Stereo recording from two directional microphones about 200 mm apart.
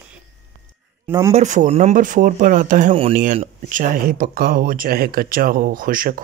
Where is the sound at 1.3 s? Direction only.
40° right (ahead or behind).